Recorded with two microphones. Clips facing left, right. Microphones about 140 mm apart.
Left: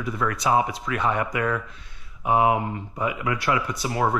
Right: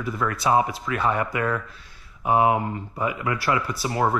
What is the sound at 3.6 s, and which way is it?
Speech, centre (ahead or behind).